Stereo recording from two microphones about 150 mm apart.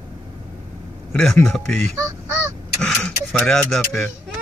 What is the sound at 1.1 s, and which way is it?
Speech, 5° left (ahead or behind).